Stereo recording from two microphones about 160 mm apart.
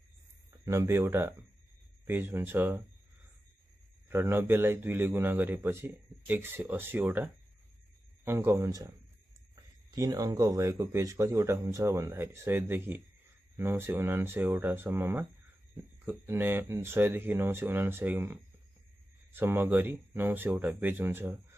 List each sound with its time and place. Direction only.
0.7 s a man's voice: 20° right (ahead or behind)
4.1 s a man's voice: 15° right (ahead or behind)
8.3 s a man's voice: 15° right (ahead or behind)